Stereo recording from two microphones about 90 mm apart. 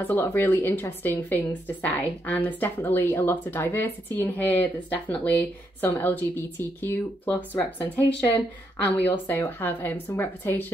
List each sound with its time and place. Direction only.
0.0 s a woman's voice: 25° left (ahead or behind)